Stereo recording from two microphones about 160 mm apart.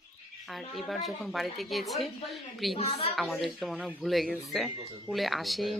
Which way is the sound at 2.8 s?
40° left (ahead or behind).